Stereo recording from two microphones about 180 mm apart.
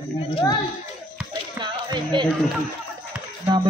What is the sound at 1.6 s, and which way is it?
Music, 25° right (ahead or behind).